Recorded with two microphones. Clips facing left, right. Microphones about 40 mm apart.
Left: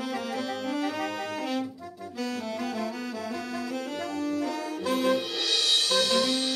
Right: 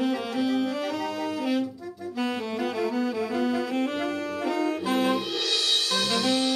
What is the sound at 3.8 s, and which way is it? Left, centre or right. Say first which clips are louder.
Saxophone: right 4 dB; right.